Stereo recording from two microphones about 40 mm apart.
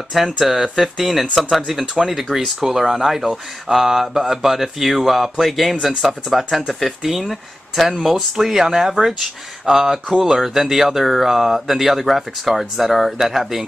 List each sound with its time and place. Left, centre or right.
0.1 s speech: centre